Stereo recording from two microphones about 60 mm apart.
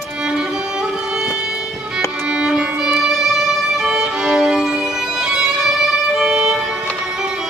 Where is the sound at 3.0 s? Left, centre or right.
Centre.